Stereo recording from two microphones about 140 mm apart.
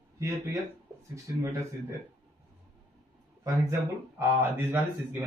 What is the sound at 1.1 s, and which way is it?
Speech, 20° right (ahead or behind).